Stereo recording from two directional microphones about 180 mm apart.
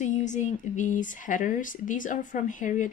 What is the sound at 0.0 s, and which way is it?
Speech, 40° left (ahead or behind).